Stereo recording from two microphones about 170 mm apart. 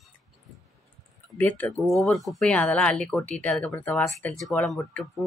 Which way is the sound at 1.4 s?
10° left (ahead or behind).